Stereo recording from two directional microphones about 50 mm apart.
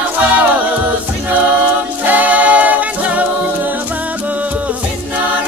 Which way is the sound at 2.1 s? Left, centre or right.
Right.